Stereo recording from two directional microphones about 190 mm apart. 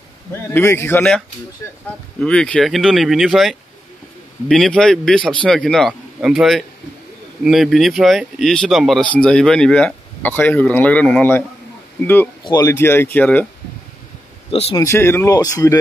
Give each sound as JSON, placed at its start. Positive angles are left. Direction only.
{"t": 0.5, "sound": "speech", "side_deg": 10}
{"t": 2.2, "sound": "speech", "side_deg": 5}
{"t": 14.5, "sound": "speech", "side_deg": 30}
{"t": 14.8, "sound": "speech", "side_deg": 15}